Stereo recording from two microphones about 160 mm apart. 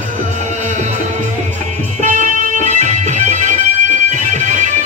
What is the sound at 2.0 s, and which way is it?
Music, 50° right (ahead or behind).